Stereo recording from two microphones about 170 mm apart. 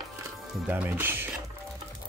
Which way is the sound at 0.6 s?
10° right (ahead or behind).